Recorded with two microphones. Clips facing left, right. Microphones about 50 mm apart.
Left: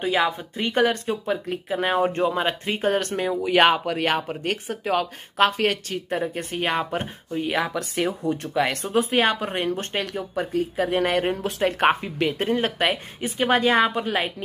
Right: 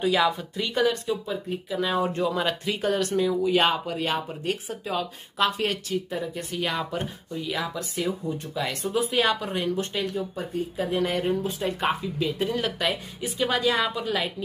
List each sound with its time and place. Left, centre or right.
0.0 s speech: left
8.8 s a woman's voice: left
12.6 s a woman's voice: left